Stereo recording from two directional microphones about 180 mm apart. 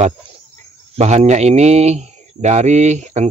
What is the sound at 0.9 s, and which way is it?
Speech, 40° right (ahead or behind).